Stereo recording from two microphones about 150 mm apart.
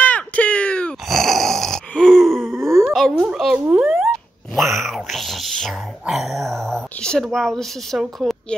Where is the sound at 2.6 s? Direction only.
20° right (ahead or behind).